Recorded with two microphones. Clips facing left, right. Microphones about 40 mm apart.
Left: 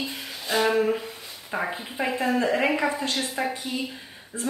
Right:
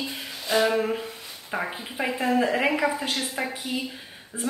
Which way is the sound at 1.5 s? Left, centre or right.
Centre.